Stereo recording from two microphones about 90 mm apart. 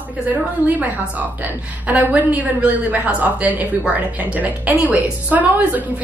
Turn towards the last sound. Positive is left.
turn(degrees=-20)  # may be behind; listen again after turning